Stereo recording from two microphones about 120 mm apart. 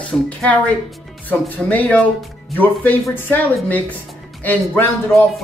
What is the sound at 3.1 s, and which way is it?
Speech, 15° left (ahead or behind).